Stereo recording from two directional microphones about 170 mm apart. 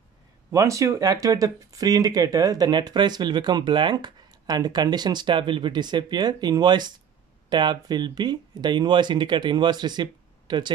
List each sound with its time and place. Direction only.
0.5 s speech: 20° right (ahead or behind)